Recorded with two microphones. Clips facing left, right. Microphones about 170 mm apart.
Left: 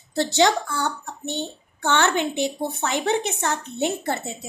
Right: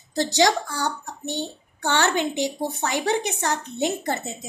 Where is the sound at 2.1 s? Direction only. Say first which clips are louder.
Even; 15° right (ahead or behind).